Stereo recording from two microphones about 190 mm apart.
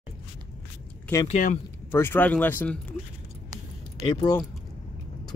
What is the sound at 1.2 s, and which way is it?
Speech, 40° left (ahead or behind).